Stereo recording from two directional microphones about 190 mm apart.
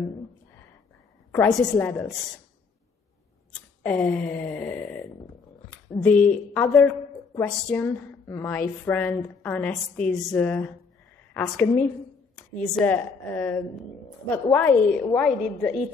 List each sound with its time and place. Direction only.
1.3 s a woman's voice: 15° left (ahead or behind)
3.8 s a woman's voice: 10° left (ahead or behind)
6.1 s a woman's voice: 45° left (ahead or behind)
6.5 s a woman's voice: 10° left (ahead or behind)